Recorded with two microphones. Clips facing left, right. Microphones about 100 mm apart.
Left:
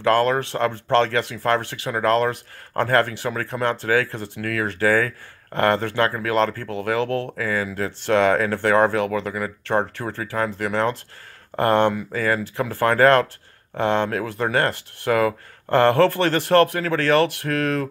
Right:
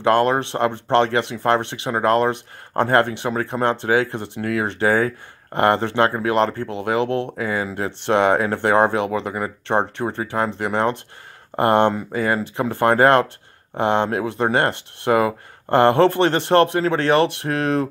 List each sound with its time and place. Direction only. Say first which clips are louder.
0.0 s speech: right 2 dB; 20° right (ahead or behind)